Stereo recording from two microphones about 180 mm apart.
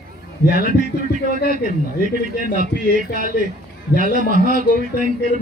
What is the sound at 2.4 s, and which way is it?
A man's voice, 50° right (ahead or behind).